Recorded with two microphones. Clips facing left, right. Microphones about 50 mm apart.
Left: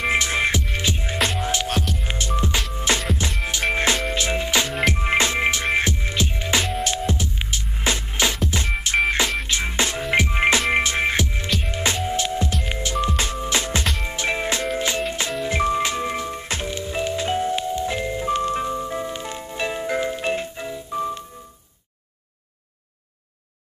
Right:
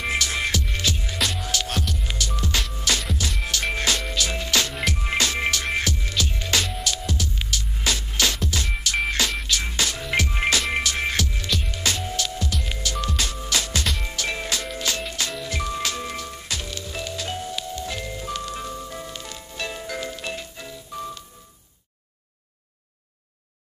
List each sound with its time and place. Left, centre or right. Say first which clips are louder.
0.1 s music: left 3 dB; left
1.7 s music: left 3 dB; centre
2.0 s music: left 4 dB; left
6.8 s music: left 4 dB; left